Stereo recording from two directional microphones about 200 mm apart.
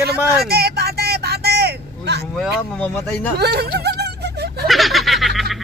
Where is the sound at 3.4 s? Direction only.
55° right (ahead or behind).